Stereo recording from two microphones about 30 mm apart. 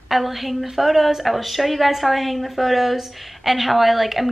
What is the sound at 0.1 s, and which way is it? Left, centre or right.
A woman's voice, centre.